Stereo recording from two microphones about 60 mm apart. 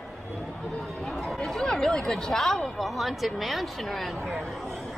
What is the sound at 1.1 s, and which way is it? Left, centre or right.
Speech, centre.